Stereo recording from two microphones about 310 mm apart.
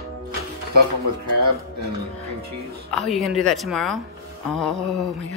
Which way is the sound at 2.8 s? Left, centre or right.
Centre.